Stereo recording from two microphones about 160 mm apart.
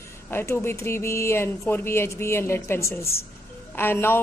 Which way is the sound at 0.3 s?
15° left (ahead or behind).